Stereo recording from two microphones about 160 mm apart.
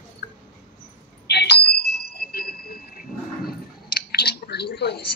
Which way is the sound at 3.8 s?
75° left (ahead or behind).